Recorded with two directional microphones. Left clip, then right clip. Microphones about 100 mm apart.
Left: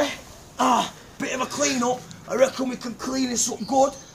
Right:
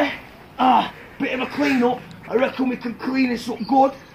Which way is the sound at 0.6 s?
55° left (ahead or behind).